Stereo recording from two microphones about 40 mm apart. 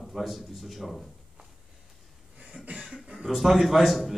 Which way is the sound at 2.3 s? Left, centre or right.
Centre.